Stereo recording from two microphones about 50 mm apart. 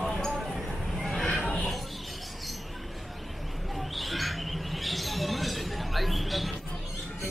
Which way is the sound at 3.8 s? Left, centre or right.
Centre.